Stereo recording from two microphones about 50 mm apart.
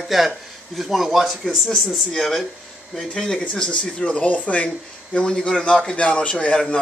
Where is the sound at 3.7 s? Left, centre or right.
Left.